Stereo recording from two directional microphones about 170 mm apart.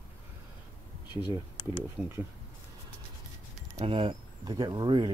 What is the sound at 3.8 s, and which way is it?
Speech, 35° right (ahead or behind).